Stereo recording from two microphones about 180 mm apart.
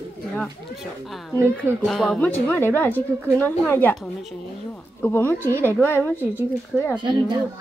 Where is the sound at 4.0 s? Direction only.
Centre (ahead or behind).